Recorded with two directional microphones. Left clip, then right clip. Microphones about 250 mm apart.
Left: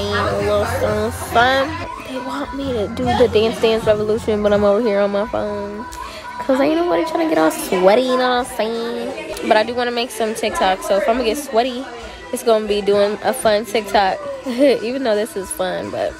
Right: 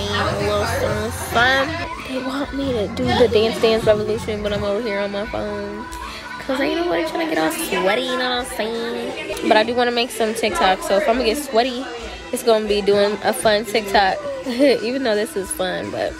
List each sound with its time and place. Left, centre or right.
0.0 s music: centre
2.3 s a woman's voice: centre
6.6 s a woman's voice: centre
8.1 s a sound: left
8.5 s a sound: left
9.5 s a woman's voice: centre